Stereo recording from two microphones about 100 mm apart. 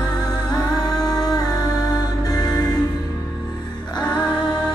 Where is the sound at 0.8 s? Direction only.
40° left (ahead or behind).